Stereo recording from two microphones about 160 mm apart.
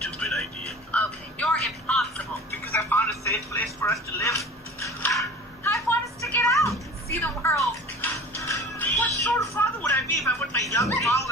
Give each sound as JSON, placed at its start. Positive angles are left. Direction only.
{"t": 0.0, "sound": "music", "side_deg": 5}
{"t": 5.6, "sound": "a sound", "side_deg": 15}
{"t": 7.2, "sound": "music", "side_deg": 15}